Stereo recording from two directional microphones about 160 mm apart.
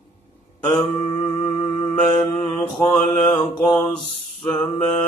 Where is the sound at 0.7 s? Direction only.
30° left (ahead or behind).